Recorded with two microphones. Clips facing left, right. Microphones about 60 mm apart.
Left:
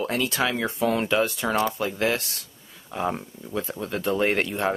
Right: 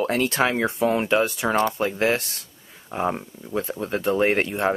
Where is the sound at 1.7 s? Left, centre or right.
Right.